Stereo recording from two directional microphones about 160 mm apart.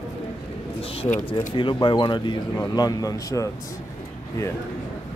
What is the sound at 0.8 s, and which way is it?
Speech, 35° left (ahead or behind).